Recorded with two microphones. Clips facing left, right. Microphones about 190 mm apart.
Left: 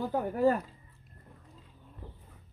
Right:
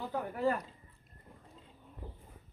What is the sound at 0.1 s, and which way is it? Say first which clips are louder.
Speech: left 5 dB; 40° left (ahead or behind).